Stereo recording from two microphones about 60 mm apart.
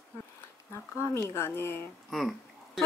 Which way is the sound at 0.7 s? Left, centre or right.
Left.